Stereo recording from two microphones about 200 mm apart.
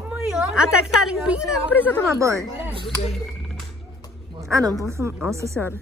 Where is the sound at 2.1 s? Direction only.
15° right (ahead or behind).